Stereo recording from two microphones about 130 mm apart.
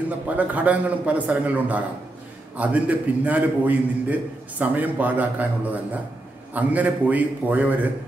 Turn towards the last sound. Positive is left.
turn(degrees=-15)  # may be behind; listen again after turning